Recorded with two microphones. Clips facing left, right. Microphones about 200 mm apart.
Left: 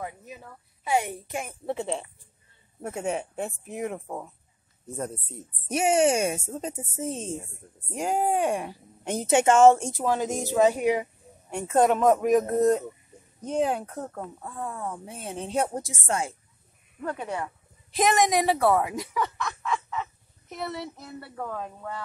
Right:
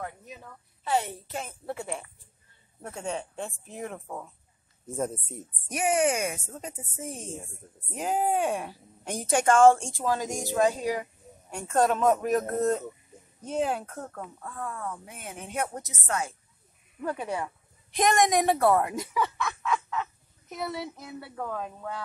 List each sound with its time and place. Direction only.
0.0 s a woman's voice: 5° left (ahead or behind); by 2.0 s 25° left (ahead or behind)
3.0 s a woman's voice: 10° left (ahead or behind)
4.9 s speech: 5° right (ahead or behind)
5.7 s a woman's voice: 25° left (ahead or behind)
7.9 s a woman's voice: 10° left (ahead or behind)
10.2 s speech: 15° right (ahead or behind)
10.5 s a woman's voice: 20° left (ahead or behind)
13.5 s speech: 5° right (ahead or behind)
13.8 s a woman's voice: 15° left (ahead or behind)
17.0 s speech: 10° right (ahead or behind)
17.9 s speech: 5° left (ahead or behind)